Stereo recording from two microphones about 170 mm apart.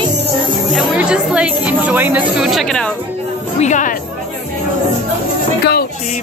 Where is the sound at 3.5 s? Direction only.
45° left (ahead or behind).